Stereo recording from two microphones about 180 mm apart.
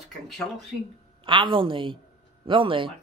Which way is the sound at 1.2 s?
25° right (ahead or behind).